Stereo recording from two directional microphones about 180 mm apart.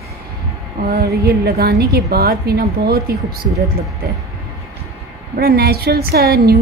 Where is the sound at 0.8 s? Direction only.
60° right (ahead or behind).